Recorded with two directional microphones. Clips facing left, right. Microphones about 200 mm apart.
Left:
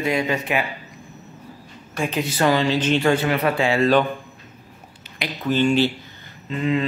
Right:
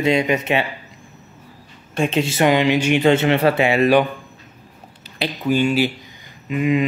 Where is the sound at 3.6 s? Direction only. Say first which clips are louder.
Right 1 dB; 15° right (ahead or behind).